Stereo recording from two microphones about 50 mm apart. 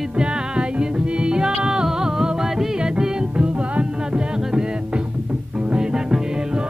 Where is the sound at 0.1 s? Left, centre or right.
Centre.